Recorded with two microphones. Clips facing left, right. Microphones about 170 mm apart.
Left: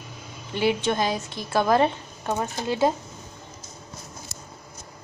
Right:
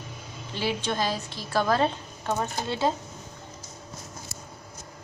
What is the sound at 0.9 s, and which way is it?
A woman's voice, 20° left (ahead or behind).